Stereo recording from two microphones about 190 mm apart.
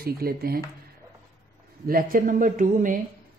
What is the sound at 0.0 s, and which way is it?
Speech, 55° right (ahead or behind).